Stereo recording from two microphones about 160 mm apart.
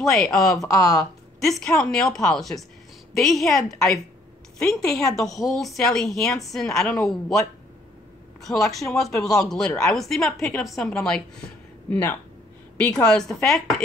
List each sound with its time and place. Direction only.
0.1 s a woman's voice: centre (ahead or behind)
0.7 s speech: 20° left (ahead or behind)
0.9 s a woman's voice: centre (ahead or behind)
4.7 s a woman's voice: centre (ahead or behind)
8.5 s a woman's voice: centre (ahead or behind)